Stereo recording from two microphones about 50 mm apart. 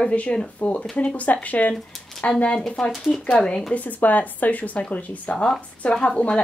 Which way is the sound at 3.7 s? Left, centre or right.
Left.